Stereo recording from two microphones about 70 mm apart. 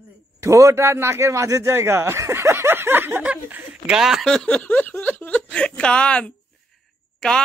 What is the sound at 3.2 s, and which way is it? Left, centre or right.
Speech, centre.